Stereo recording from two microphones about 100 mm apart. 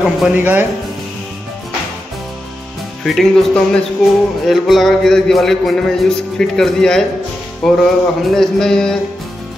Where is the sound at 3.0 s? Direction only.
Centre (ahead or behind).